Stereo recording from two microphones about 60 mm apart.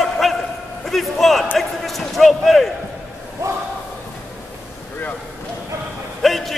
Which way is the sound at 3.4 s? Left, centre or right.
Right.